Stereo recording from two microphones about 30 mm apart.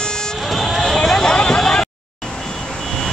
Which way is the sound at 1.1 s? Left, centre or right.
Left.